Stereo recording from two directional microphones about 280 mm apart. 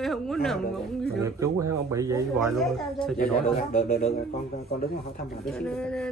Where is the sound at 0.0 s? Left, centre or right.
Centre.